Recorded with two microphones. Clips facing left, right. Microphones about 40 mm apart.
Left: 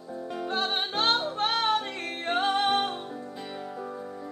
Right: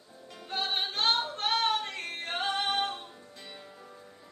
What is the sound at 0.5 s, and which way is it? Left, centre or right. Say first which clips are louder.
Music: left 2 dB; centre.